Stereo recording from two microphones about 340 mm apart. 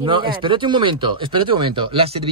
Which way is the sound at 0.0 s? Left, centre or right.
Centre.